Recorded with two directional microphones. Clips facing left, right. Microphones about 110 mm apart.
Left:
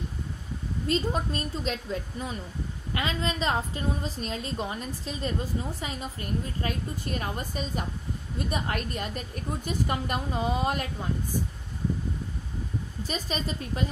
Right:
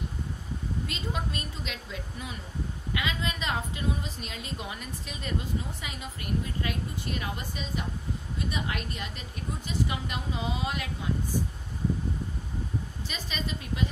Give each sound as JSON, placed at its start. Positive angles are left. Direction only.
{"t": 0.8, "sound": "a woman's voice", "side_deg": 40}
{"t": 13.0, "sound": "a woman's voice", "side_deg": 40}